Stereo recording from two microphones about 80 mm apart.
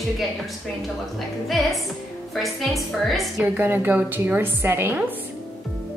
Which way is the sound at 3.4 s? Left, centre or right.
Right.